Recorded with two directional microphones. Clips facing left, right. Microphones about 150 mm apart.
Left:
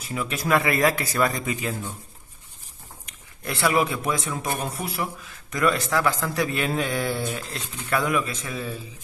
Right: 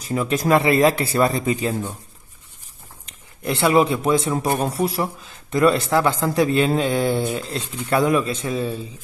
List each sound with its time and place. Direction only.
0.0 s speech: 35° right (ahead or behind)
3.1 s a man's voice: 25° right (ahead or behind)